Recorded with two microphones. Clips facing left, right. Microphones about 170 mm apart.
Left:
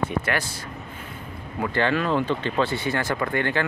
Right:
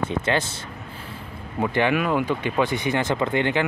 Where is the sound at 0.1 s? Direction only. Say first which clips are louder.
Right 3 dB; 20° right (ahead or behind).